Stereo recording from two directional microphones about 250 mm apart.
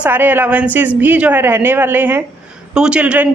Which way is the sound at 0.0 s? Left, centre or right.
Centre.